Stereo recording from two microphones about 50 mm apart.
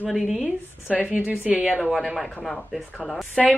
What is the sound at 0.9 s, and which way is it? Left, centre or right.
Speech, right.